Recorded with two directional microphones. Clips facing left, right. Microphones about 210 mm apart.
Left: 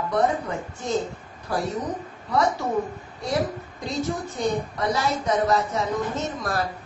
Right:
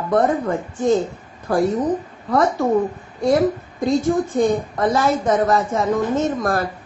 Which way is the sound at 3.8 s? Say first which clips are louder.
Right 10 dB; 50° right (ahead or behind).